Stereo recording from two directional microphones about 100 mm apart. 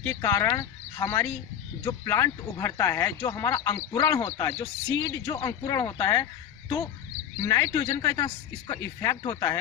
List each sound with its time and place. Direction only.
0.0 s speech: 30° left (ahead or behind)
7.3 s speech: 35° left (ahead or behind)